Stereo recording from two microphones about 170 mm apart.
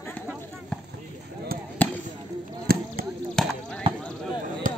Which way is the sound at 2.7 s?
60° right (ahead or behind).